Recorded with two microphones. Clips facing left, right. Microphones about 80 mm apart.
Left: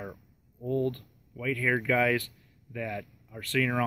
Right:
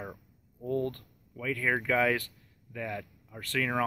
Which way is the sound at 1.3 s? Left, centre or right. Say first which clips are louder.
Left 2 dB; right.